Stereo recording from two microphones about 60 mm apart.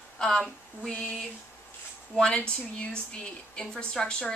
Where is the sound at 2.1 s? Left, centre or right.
Centre.